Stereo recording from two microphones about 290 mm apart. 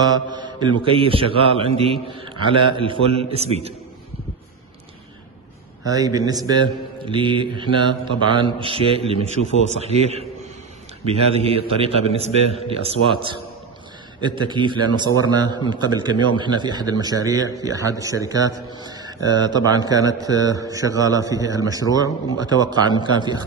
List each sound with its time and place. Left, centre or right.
0.0 s a man's voice: centre
5.9 s a man's voice: centre
14.2 s a man's voice: centre